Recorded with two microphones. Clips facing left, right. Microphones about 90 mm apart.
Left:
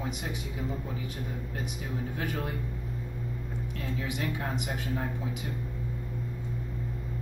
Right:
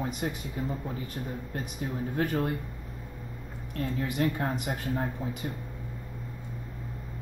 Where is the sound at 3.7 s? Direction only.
45° right (ahead or behind).